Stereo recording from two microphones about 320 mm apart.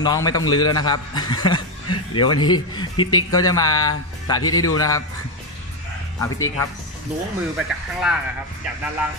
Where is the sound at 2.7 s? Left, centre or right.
Centre.